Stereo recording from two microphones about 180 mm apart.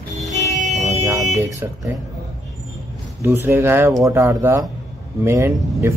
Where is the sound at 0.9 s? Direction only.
15° right (ahead or behind).